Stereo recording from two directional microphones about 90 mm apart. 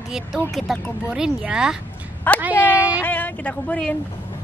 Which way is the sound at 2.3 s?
20° left (ahead or behind).